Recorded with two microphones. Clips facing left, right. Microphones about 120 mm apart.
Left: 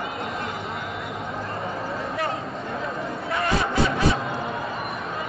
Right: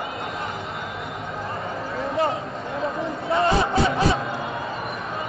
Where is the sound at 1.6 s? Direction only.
Centre (ahead or behind).